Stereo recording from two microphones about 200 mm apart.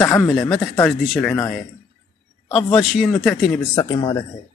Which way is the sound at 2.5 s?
25° left (ahead or behind).